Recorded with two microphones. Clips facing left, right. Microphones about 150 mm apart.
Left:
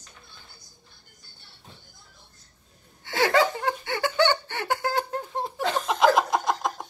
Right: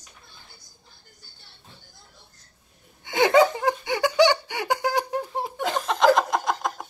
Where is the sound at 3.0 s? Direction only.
20° right (ahead or behind).